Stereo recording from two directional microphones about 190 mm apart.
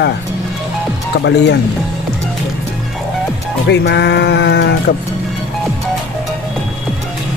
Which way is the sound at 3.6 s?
65° left (ahead or behind).